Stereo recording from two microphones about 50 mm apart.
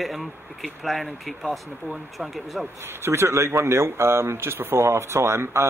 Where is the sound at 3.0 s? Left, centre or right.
Right.